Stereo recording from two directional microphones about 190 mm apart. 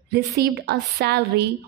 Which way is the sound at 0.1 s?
55° right (ahead or behind).